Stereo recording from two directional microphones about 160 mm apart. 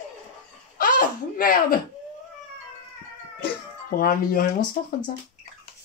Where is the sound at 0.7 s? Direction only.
60° left (ahead or behind).